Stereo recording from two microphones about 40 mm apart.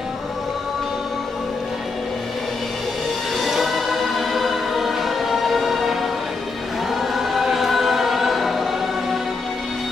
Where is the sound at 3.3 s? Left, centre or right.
Centre.